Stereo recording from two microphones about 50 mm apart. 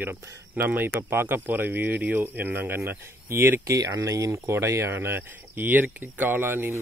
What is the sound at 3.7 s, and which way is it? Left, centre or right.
Speech, right.